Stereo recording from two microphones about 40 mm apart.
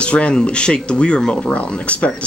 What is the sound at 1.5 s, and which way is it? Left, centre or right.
Speech, left.